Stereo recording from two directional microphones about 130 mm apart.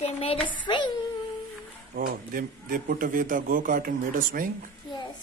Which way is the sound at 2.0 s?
90° right.